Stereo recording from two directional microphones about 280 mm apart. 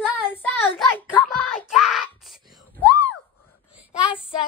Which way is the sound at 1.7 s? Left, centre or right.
Centre.